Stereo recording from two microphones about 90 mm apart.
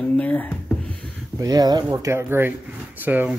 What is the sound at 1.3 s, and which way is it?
Speech, 40° right (ahead or behind).